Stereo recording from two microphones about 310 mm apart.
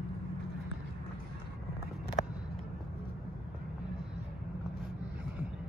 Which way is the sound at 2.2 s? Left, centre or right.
Left.